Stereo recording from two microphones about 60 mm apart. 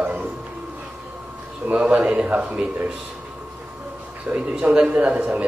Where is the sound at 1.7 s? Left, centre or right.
Right.